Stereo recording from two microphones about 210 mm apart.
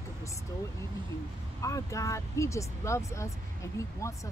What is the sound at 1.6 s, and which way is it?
Speech, 15° left (ahead or behind).